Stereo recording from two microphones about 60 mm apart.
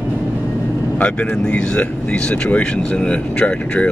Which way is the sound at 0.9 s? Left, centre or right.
Left.